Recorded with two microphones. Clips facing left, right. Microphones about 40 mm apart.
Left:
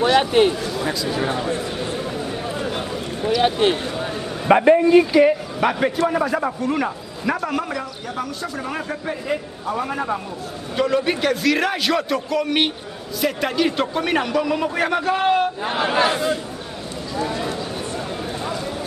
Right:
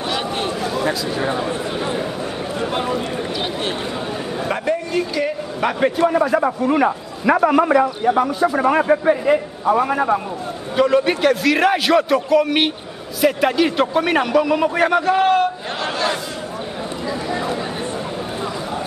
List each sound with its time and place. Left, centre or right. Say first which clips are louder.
0.2 s a man's voice: left 7 dB; left
0.7 s a sound: right 4 dB; centre
1.0 s a man's voice: right 1 dB; centre
1.5 s a sound: right 2 dB; right
2.7 s speech: right 5 dB; right
4.5 s a man's voice: left 10 dB; left
5.6 s a man's voice: right 5 dB; centre
15.7 s speech: left 3 dB; centre